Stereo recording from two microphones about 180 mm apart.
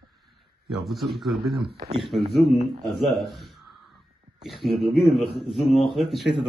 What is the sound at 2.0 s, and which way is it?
A man's voice, centre (ahead or behind).